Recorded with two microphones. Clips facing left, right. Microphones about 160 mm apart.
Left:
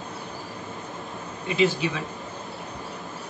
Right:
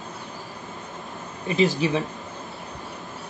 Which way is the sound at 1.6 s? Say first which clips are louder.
Right 1 dB; 40° right (ahead or behind).